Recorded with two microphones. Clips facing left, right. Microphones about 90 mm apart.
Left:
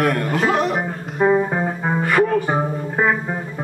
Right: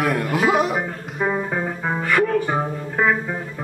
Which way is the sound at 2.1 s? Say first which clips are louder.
Left 1 dB; 20° left (ahead or behind).